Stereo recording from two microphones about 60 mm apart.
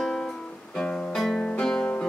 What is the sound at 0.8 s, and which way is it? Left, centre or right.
Guitar, centre.